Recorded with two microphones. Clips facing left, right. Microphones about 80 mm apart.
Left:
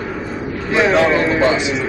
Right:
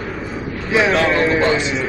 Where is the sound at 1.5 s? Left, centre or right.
Centre.